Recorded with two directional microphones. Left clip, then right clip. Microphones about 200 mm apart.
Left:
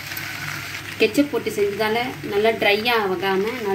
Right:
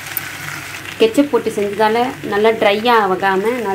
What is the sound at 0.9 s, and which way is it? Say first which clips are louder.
Speech: right 6 dB; 35° right (ahead or behind).